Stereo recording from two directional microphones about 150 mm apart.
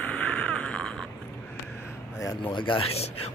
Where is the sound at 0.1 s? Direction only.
10° left (ahead or behind).